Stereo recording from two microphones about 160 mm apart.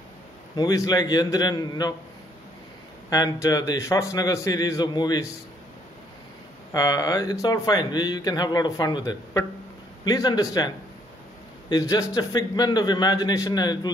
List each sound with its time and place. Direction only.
0.6 s speech: 20° left (ahead or behind)
3.1 s speech: 20° left (ahead or behind)
6.7 s speech: 20° left (ahead or behind)
11.7 s speech: 20° left (ahead or behind)